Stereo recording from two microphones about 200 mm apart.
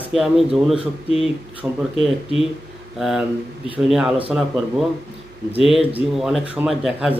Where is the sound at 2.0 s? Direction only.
30° left (ahead or behind).